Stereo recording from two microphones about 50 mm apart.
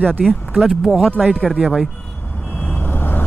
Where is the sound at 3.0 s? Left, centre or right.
Left.